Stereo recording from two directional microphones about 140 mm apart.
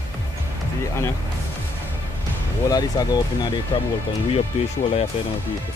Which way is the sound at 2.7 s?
30° left (ahead or behind).